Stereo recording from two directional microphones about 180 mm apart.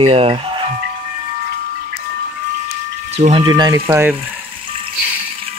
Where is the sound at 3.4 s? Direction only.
20° right (ahead or behind).